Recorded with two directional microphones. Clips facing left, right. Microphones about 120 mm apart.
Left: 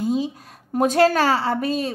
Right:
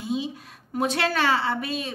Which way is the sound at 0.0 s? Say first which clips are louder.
Left 6 dB; 40° left (ahead or behind).